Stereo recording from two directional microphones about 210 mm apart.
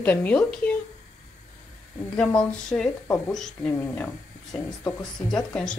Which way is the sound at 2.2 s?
5° left (ahead or behind).